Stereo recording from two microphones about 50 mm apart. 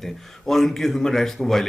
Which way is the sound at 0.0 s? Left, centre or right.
Centre.